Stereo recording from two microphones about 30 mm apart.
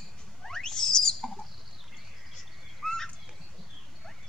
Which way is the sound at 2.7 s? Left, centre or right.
Centre.